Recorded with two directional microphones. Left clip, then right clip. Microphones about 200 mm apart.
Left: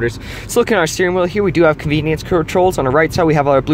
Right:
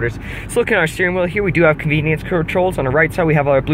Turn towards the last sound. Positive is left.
turn(degrees=20)  # may be behind; listen again after turning